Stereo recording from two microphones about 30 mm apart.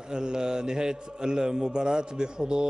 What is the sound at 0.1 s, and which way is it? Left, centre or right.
A man's voice, right.